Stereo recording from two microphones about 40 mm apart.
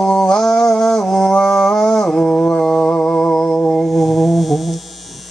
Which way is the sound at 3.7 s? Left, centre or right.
Centre.